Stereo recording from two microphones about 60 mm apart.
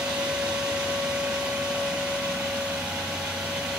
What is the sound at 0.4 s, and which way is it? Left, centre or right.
Vacuum cleaner, centre.